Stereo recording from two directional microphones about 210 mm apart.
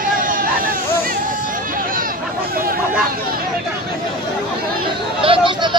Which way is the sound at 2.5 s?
45° right (ahead or behind).